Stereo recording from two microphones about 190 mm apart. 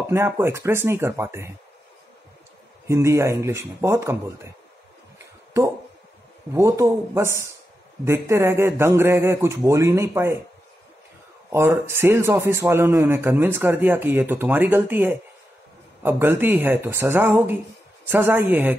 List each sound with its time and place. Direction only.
0.1 s a man's voice: 15° right (ahead or behind)
2.9 s a man's voice: 15° right (ahead or behind)
6.5 s a man's voice: 15° right (ahead or behind)
11.5 s a man's voice: 15° right (ahead or behind)